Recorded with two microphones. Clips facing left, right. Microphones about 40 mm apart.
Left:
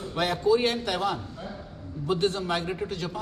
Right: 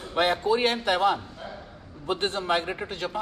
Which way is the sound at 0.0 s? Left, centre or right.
Right.